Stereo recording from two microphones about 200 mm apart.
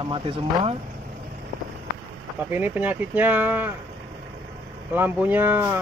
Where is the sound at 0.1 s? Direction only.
25° right (ahead or behind).